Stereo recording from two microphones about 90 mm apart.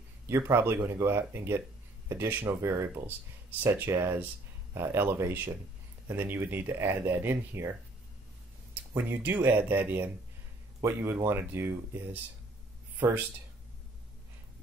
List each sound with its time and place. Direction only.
0.3 s speech: 25° right (ahead or behind)
8.9 s speech: 25° right (ahead or behind)